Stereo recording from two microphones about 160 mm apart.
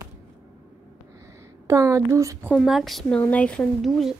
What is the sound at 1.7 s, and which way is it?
Speech, 20° right (ahead or behind).